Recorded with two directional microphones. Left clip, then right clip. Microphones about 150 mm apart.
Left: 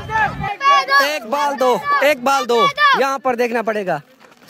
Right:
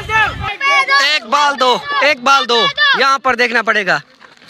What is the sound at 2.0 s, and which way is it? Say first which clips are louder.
Speech: right 4 dB; 25° left (ahead or behind).